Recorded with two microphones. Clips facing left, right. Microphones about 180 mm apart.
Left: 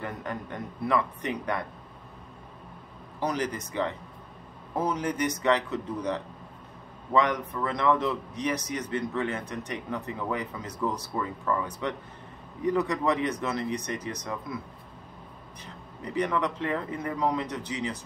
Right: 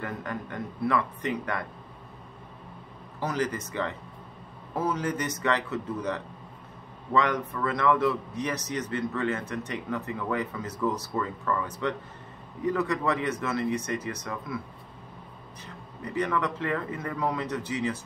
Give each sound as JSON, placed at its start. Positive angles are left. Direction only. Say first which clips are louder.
{"t": 0.0, "sound": "a man's voice", "louder": "right 1 dB", "side_deg": 15}
{"t": 3.2, "sound": "a man's voice", "louder": "even", "side_deg": 15}
{"t": 15.6, "sound": "a man's voice", "louder": "even", "side_deg": 15}